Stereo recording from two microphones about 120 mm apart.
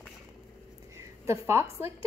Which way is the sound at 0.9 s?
25° right (ahead or behind).